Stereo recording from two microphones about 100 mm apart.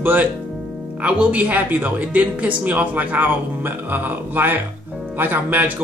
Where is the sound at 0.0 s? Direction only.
20° right (ahead or behind).